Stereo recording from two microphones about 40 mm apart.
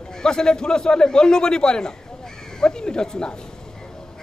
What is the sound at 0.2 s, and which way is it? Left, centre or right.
A woman's voice, centre.